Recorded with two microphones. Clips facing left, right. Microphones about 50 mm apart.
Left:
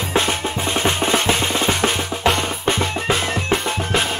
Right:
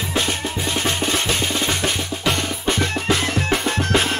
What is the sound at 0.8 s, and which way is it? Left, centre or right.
Drum, left.